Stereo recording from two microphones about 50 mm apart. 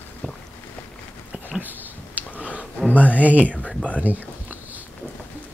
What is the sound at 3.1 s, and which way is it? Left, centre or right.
Speech, right.